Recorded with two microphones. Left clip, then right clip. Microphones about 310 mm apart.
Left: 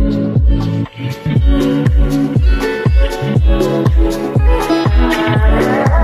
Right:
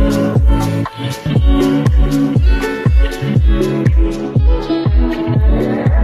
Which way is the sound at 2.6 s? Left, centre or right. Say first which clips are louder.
Left 5 dB; centre.